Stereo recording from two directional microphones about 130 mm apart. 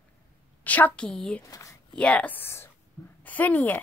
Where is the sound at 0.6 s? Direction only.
10° left (ahead or behind).